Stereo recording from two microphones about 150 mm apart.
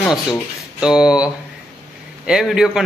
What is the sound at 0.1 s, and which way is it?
A man's voice, 5° right (ahead or behind).